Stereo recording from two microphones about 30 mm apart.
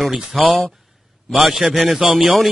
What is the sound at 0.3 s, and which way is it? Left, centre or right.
Speech, centre.